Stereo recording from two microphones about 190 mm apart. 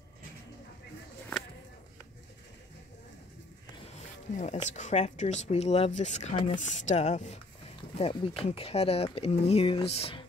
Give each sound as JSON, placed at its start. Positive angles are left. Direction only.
{"t": 4.4, "sound": "speech", "side_deg": 40}
{"t": 6.3, "sound": "speech", "side_deg": 25}
{"t": 6.6, "sound": "speech", "side_deg": 40}